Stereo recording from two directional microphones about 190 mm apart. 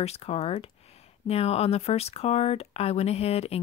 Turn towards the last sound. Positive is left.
turn(degrees=30)  # may be behind; listen again after turning